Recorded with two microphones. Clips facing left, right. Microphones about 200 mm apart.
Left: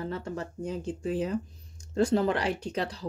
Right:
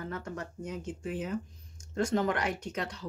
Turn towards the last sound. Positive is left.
turn(degrees=35)  # may be behind; listen again after turning